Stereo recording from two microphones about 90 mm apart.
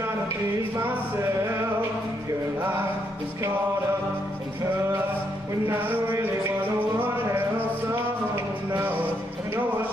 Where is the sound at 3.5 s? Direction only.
25° right (ahead or behind).